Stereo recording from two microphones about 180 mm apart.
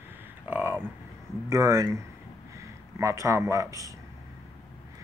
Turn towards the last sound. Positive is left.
turn(degrees=-20)  # may be behind; listen again after turning